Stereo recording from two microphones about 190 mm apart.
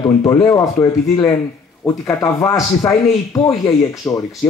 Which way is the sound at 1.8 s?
15° left (ahead or behind).